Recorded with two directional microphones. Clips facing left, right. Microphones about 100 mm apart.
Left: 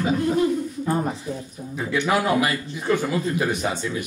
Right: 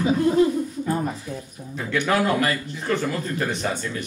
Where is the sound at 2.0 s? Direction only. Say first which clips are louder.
Even; 10° left (ahead or behind).